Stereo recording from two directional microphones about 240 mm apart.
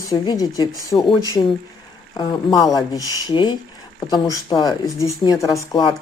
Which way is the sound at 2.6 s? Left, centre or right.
Centre.